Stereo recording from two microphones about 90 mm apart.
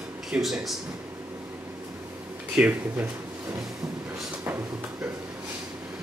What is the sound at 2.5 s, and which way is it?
Speech, 15° right (ahead or behind).